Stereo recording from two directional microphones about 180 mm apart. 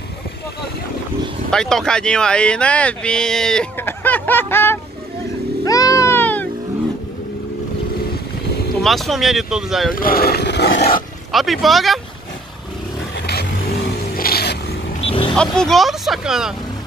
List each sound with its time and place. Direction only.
1.5 s speech: 5° left (ahead or behind)
5.7 s music: 20° left (ahead or behind)
8.7 s speech: centre (ahead or behind)
9.9 s a sound: 55° left (ahead or behind)
11.3 s speech: centre (ahead or behind)
13.3 s vehicle: 60° left (ahead or behind)
15.0 s vehicle: 30° left (ahead or behind)
15.3 s speech: 5° left (ahead or behind)